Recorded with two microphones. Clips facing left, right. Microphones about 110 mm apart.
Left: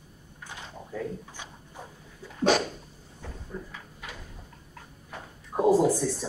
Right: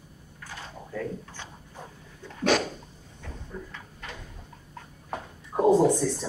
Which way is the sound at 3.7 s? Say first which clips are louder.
Right 1 dB; 5° left (ahead or behind).